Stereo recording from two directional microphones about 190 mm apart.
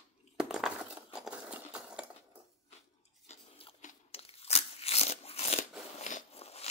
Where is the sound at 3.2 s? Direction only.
40° left (ahead or behind).